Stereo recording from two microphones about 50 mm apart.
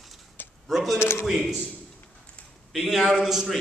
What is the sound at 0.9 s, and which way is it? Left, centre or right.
Speech, left.